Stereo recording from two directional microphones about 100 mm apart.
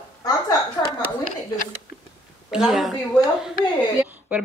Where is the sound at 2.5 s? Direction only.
5° right (ahead or behind).